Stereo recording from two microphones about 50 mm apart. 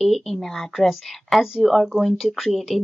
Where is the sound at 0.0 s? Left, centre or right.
Centre.